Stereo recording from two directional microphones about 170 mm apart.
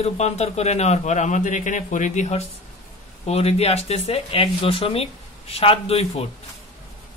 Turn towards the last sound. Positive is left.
turn(degrees=35)  # may be behind; listen again after turning